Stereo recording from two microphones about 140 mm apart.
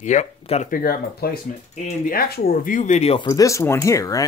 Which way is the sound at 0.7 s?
90° left.